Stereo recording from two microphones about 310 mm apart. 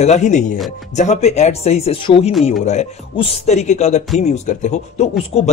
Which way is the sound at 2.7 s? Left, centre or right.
Centre.